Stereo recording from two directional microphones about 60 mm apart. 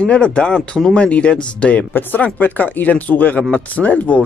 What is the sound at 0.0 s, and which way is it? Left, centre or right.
Speech, centre.